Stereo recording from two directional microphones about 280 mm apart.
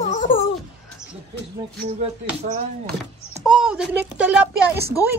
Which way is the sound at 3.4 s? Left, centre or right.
Centre.